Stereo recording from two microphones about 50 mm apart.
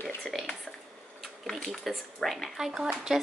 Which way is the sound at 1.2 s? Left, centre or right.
Centre.